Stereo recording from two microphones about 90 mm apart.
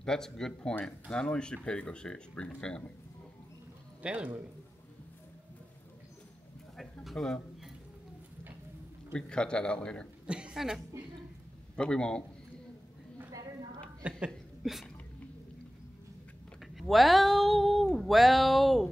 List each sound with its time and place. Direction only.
0.0 s speech: 5° left (ahead or behind)
4.0 s speech: 15° right (ahead or behind)
6.8 s speech: centre (ahead or behind)
9.1 s speech: 10° left (ahead or behind)
10.2 s a woman's voice: 10° right (ahead or behind)
11.7 s speech: 10° left (ahead or behind)
14.6 s speech: centre (ahead or behind)
16.7 s speech: centre (ahead or behind)